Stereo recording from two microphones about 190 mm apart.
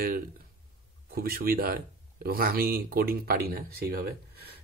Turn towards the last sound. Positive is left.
turn(degrees=-55)  # may be behind; listen again after turning